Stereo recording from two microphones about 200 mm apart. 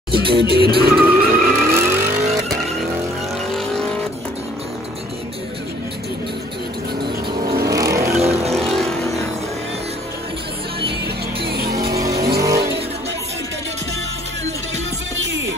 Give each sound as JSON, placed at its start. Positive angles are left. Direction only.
{"t": 0.3, "sound": "music", "side_deg": -55}
{"t": 0.7, "sound": "vehicle", "side_deg": -50}
{"t": 0.9, "sound": "vehicle", "side_deg": -10}
{"t": 3.5, "sound": "vehicle", "side_deg": 5}
{"t": 7.6, "sound": "vehicle", "side_deg": -15}
{"t": 8.2, "sound": "vehicle", "side_deg": -30}
{"t": 8.5, "sound": "vehicle", "side_deg": 0}
{"t": 11.4, "sound": "music", "side_deg": -55}
{"t": 11.9, "sound": "vehicle", "side_deg": -15}
{"t": 15.1, "sound": "music", "side_deg": -65}